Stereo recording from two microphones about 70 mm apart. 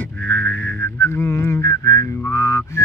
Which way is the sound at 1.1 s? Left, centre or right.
Left.